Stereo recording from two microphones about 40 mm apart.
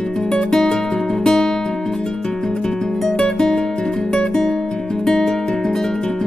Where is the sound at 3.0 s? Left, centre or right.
Centre.